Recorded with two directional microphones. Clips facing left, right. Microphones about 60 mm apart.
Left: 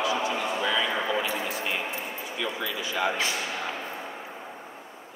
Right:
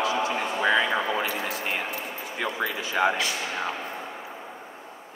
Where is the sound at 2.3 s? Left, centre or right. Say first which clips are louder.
Right 3 dB; right.